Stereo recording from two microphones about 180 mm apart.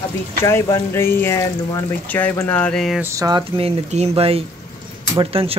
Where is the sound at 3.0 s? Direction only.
20° right (ahead or behind).